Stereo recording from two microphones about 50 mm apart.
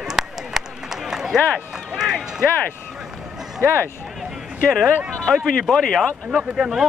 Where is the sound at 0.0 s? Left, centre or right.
Centre.